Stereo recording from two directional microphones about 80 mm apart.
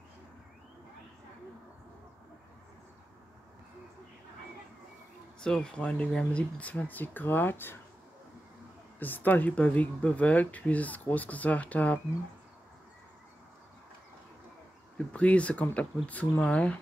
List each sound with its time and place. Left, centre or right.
5.4 s speech: centre; by 7.8 s left
9.0 s speech: left
15.1 s speech: centre